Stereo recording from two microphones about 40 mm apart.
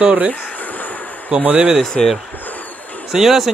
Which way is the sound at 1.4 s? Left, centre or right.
Right.